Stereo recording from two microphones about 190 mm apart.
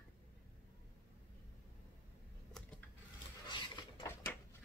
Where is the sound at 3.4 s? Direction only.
25° left (ahead or behind).